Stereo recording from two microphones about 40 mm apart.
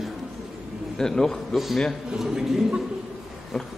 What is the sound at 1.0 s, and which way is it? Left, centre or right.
Speech, centre.